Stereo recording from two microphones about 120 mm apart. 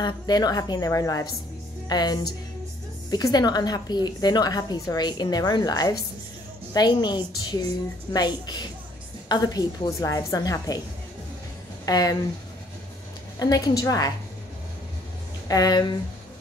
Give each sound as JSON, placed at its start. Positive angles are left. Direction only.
{"t": 0.0, "sound": "a woman's voice", "side_deg": 35}
{"t": 11.8, "sound": "speech", "side_deg": 30}
{"t": 13.4, "sound": "a woman's voice", "side_deg": 30}
{"t": 15.4, "sound": "a woman's voice", "side_deg": 30}